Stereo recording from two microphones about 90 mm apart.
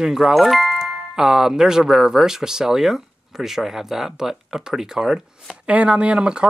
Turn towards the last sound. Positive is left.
turn(degrees=-10)  # may be behind; listen again after turning